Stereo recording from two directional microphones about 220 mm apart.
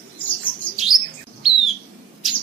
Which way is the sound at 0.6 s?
20° left (ahead or behind).